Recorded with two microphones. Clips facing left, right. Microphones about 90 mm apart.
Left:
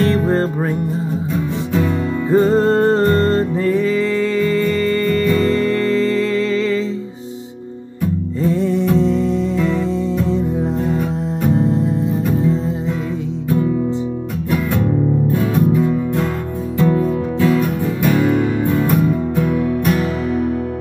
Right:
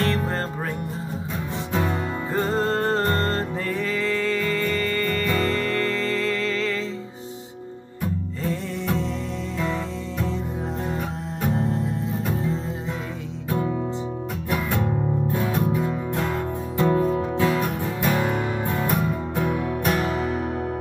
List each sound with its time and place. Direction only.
0.0 s music: 15° left (ahead or behind)
1.7 s music: 30° right (ahead or behind)
2.3 s music: 10° left (ahead or behind)
9.0 s music: centre (ahead or behind)
16.7 s music: 35° right (ahead or behind)